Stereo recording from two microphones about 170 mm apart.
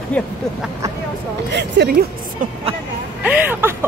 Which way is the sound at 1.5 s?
80° right.